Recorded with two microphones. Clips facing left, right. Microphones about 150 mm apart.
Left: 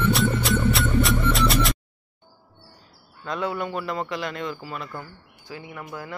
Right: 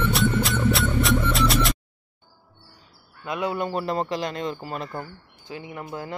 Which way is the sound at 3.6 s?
30° right (ahead or behind).